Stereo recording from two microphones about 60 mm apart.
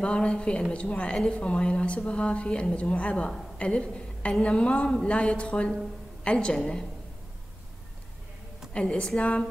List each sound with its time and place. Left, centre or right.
0.0 s a woman's voice: centre
8.7 s a woman's voice: centre